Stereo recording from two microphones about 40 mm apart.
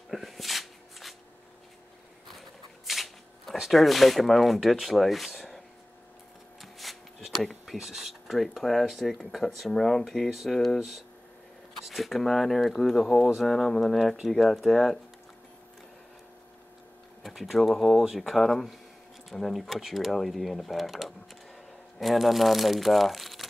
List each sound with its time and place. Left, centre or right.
0.1 s shuffling cards: centre
2.9 s shuffling cards: centre
3.7 s speech: centre
6.6 s shuffling cards: centre
7.2 s a sound: centre
7.7 s speech: centre
11.8 s speech: centre
17.2 s speech: centre